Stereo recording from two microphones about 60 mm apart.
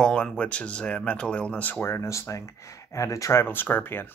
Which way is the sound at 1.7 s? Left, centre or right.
Left.